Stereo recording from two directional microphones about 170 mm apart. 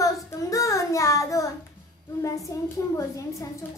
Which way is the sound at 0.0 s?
20° left (ahead or behind).